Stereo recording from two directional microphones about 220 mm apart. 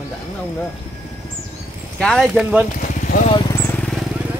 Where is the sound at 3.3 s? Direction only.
15° left (ahead or behind).